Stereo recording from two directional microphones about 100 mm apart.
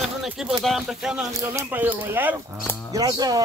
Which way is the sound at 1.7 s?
20° right (ahead or behind).